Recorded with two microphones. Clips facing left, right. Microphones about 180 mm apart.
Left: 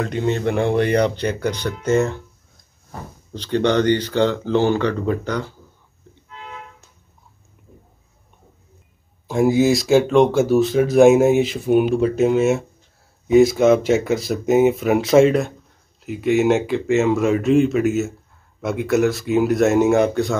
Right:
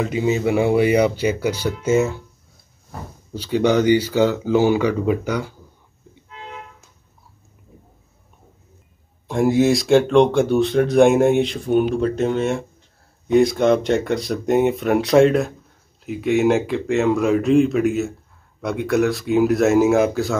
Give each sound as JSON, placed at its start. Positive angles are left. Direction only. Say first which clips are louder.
{"t": 0.0, "sound": "speech", "louder": "right 1 dB", "side_deg": -5}
{"t": 3.3, "sound": "speech", "louder": "right 1 dB", "side_deg": -10}
{"t": 9.3, "sound": "speech", "louder": "even", "side_deg": 0}